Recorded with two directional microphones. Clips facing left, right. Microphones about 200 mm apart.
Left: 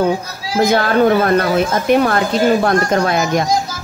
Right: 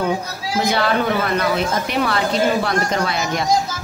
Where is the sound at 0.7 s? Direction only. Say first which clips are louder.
Left 6 dB; 50° left (ahead or behind).